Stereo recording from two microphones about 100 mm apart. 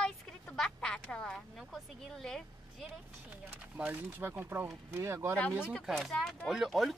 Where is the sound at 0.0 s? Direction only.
10° left (ahead or behind).